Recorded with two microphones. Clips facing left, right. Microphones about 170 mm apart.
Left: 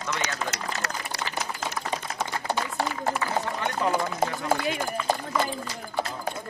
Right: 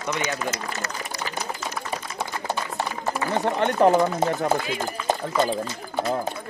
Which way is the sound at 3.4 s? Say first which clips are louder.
Right 9 dB; 65° right (ahead or behind).